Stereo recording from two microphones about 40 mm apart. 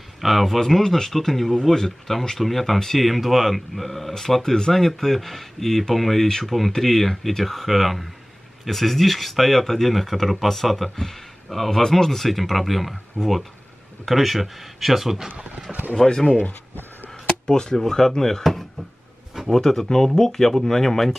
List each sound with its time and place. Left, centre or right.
0.2 s speech: centre
0.6 s speech: centre
13.2 s speech: right
14.0 s speech: centre
15.3 s speech: right
16.0 s speech: centre
17.5 s speech: centre